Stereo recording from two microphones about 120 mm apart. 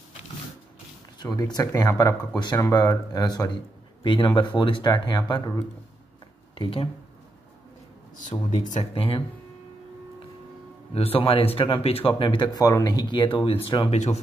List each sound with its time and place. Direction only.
1.2 s speech: 35° left (ahead or behind)
6.5 s speech: 50° left (ahead or behind)
8.5 s speech: 90° left
8.9 s speech: 50° left (ahead or behind)
11.0 s speech: 50° left (ahead or behind)
13.9 s speech: 70° left (ahead or behind)